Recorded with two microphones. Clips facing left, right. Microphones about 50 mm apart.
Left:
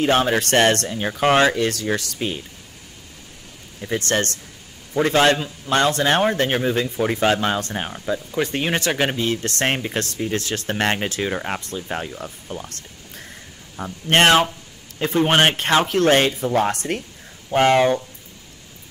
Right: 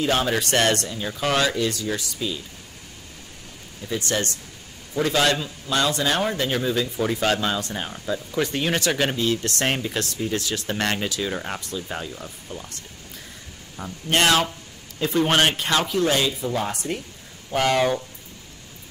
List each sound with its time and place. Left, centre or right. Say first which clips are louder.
0.0 s speech: left 4 dB; left
1.6 s speech: left 3 dB; left
3.8 s speech: left 4 dB; left
4.9 s speech: left 4 dB; left
7.9 s speech: left 1 dB; left
12.4 s music: left 4 dB; left
14.0 s speech: left 5 dB; left
15.9 s speech: left 5 dB; left
17.5 s speech: left 5 dB; left